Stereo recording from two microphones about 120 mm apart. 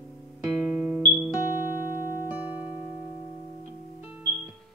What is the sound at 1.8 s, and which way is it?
Music, 25° left (ahead or behind).